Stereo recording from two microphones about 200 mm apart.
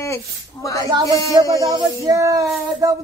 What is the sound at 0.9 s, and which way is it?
Speech, 20° right (ahead or behind).